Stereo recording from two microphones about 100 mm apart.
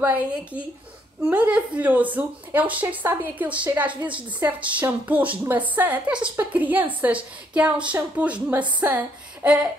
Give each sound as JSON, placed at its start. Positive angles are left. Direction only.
{"t": 0.0, "sound": "a woman's voice", "side_deg": -15}